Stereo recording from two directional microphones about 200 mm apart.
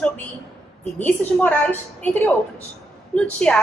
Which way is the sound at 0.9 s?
10° left (ahead or behind).